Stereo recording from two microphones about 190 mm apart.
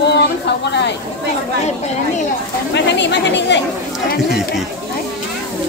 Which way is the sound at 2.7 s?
65° left (ahead or behind).